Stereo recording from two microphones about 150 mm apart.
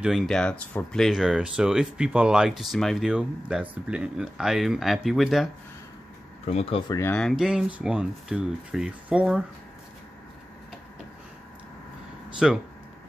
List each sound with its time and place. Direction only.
0.0 s speech: centre (ahead or behind)
6.4 s speech: 45° left (ahead or behind)
6.9 s speech: 15° left (ahead or behind)
7.2 s speech: centre (ahead or behind)
12.4 s speech: centre (ahead or behind)